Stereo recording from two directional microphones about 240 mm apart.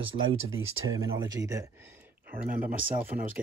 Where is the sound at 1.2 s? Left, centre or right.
Centre.